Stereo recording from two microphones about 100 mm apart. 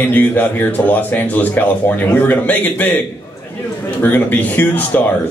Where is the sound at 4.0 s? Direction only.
20° left (ahead or behind).